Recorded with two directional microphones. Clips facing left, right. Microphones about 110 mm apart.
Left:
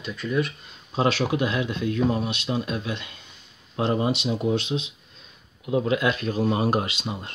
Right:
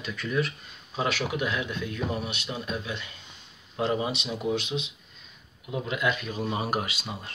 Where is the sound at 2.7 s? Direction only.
60° left (ahead or behind).